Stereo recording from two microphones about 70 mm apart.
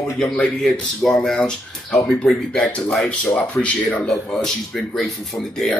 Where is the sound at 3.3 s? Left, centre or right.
Centre.